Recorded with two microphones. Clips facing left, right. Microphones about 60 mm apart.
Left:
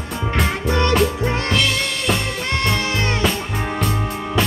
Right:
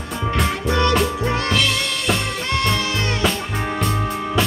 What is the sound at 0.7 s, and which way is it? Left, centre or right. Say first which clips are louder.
Music: even; left.